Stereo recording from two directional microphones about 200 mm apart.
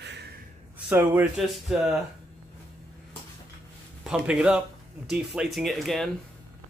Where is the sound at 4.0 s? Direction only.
5° right (ahead or behind).